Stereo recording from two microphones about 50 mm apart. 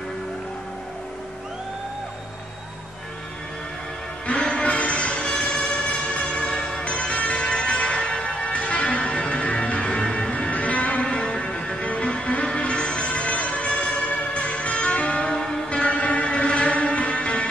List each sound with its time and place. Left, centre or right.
4.3 s music: left
6.8 s church bell: left
15.3 s music: centre